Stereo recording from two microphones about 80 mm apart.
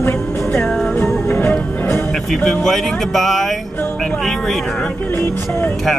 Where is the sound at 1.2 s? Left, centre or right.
Left.